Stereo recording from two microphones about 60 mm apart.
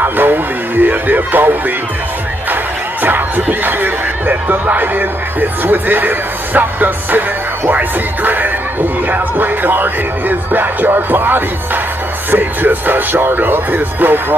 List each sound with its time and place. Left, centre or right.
0.0 s speech: right